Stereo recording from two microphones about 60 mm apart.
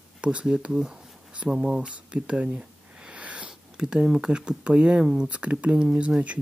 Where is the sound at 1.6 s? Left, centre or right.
Centre.